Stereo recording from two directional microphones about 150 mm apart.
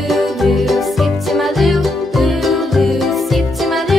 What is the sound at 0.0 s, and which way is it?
Music, centre (ahead or behind).